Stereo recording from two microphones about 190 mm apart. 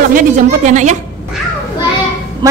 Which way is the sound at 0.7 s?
40° right (ahead or behind).